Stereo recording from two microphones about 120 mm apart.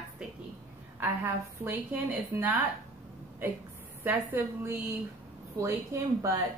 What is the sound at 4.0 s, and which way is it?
A woman's voice, 15° right (ahead or behind).